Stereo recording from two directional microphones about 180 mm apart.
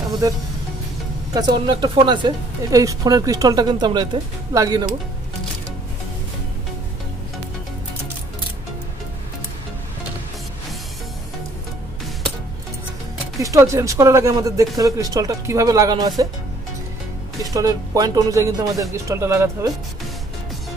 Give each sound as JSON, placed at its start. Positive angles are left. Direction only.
{"t": 1.3, "sound": "speech", "side_deg": -25}
{"t": 13.4, "sound": "speech", "side_deg": -15}
{"t": 17.4, "sound": "speech", "side_deg": -20}